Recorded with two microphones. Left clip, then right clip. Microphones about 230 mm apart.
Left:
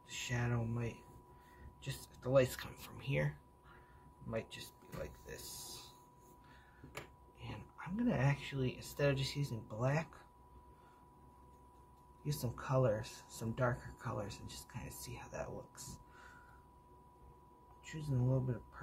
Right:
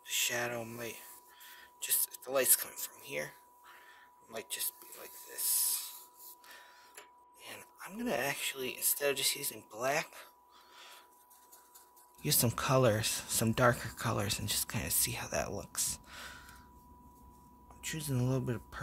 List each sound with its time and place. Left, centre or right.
0.0 s speech: right
7.4 s speech: right
12.3 s speech: right
17.8 s speech: right